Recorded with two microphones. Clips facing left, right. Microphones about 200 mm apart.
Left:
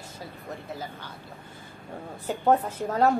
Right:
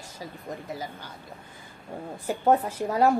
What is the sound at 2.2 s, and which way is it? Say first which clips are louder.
Speech: even; 10° right (ahead or behind).